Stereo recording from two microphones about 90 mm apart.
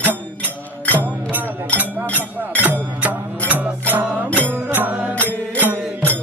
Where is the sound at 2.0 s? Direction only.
15° left (ahead or behind).